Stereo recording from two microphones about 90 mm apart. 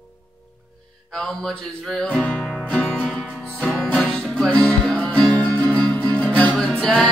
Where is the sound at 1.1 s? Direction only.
5° left (ahead or behind).